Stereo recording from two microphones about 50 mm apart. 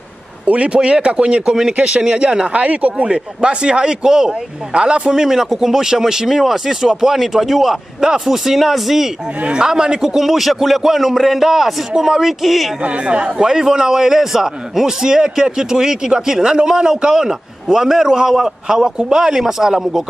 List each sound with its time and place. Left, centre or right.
0.7 s speech: centre
9.4 s speech: centre
12.8 s speech: right